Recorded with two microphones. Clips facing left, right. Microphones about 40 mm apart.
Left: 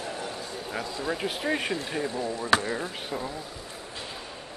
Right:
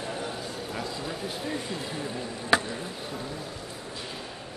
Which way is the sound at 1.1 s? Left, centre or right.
Left.